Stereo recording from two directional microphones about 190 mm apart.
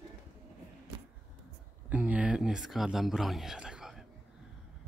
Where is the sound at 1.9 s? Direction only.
5° right (ahead or behind).